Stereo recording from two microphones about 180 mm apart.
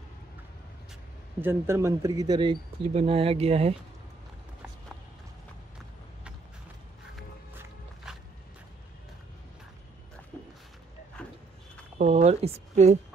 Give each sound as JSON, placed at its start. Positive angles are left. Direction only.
{"t": 1.4, "sound": "speech", "side_deg": -15}
{"t": 2.9, "sound": "speech", "side_deg": -35}
{"t": 7.5, "sound": "music", "side_deg": -5}
{"t": 11.2, "sound": "a sound", "side_deg": 5}
{"t": 12.0, "sound": "speech", "side_deg": -40}